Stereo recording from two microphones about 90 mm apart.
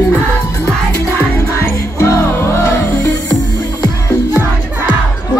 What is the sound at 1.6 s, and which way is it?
Music, 30° left (ahead or behind).